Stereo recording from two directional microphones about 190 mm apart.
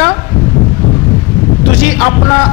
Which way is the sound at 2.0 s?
15° left (ahead or behind).